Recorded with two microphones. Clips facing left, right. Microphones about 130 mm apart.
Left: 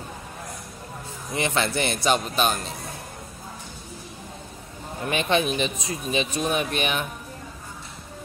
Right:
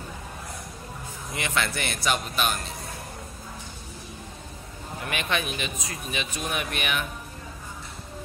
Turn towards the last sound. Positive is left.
turn(degrees=30)  # may be behind; listen again after turning